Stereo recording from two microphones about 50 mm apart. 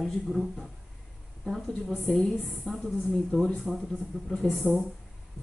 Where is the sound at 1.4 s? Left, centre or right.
Centre.